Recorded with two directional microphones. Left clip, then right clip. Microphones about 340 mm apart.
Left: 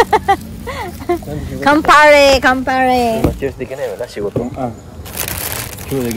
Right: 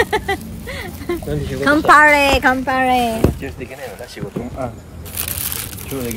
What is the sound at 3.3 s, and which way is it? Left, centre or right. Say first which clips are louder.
Speech: left 9 dB; left.